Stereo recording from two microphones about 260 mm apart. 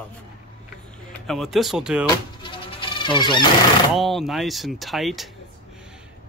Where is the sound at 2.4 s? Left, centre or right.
Centre.